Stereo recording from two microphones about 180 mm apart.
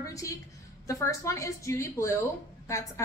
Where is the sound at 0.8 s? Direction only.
15° left (ahead or behind).